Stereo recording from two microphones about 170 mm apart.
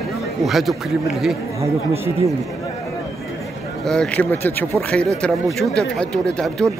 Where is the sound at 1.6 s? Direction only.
15° right (ahead or behind).